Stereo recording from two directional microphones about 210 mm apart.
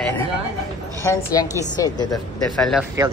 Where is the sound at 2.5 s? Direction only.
Centre (ahead or behind).